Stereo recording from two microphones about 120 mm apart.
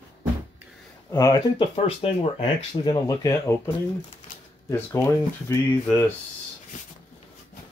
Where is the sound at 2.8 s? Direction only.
30° left (ahead or behind).